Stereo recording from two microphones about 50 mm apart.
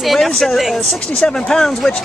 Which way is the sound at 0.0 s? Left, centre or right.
Centre.